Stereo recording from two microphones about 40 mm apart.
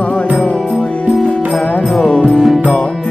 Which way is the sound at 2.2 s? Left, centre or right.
Centre.